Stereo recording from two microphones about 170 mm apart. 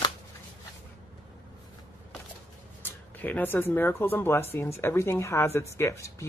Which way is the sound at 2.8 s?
10° left (ahead or behind).